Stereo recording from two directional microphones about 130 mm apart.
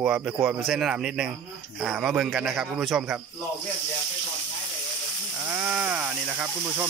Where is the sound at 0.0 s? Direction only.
5° right (ahead or behind).